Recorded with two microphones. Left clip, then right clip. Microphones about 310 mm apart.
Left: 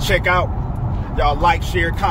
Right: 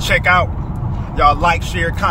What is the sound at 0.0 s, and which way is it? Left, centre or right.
Speech, centre.